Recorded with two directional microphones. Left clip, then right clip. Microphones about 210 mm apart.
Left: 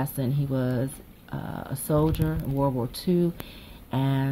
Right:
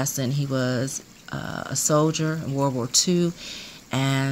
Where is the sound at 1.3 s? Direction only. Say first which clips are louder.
Right 4 dB; 90° right.